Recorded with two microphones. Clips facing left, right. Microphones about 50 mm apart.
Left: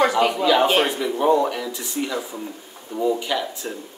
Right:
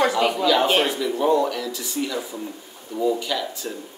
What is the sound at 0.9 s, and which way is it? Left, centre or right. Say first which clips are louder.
A man's voice: left 1 dB; left.